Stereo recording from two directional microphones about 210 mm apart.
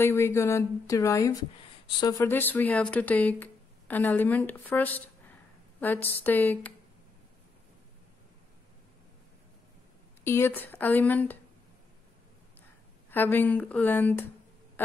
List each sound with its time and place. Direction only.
0.0 s speech: 10° left (ahead or behind)
10.2 s speech: 10° left (ahead or behind)
13.1 s speech: 10° left (ahead or behind)